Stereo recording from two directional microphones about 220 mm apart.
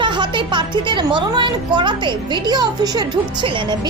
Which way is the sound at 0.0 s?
20° right (ahead or behind).